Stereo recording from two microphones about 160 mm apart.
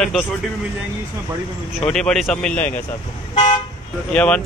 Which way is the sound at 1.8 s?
5° left (ahead or behind).